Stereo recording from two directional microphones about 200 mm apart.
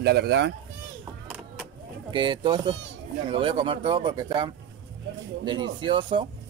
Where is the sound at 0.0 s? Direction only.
55° right (ahead or behind).